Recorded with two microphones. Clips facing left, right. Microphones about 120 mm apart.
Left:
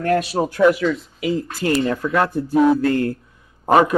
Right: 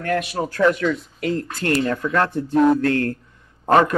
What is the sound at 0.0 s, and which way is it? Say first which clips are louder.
Speech: left 4 dB; 30° left (ahead or behind).